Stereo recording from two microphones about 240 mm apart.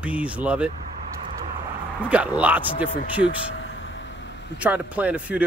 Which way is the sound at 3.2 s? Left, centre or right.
Left.